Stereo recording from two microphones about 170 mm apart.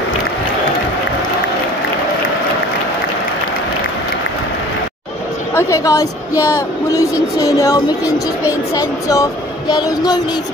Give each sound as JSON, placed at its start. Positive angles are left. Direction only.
{"t": 5.5, "sound": "a woman's voice", "side_deg": 15}